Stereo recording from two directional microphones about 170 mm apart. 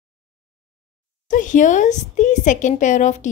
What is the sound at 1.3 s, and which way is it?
A woman's voice, 50° left (ahead or behind).